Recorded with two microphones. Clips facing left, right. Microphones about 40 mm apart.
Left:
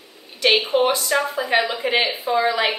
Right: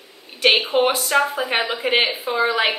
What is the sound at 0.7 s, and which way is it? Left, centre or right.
Speech, right.